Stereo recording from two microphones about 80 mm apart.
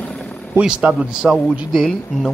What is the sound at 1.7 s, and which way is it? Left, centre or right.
Speech, centre.